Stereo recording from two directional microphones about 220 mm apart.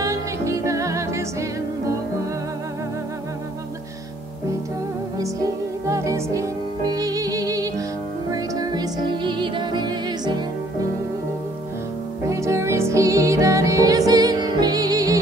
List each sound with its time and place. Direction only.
0.0 s music: 15° right (ahead or behind)
5.2 s music: 15° right (ahead or behind)
12.3 s music: 15° right (ahead or behind)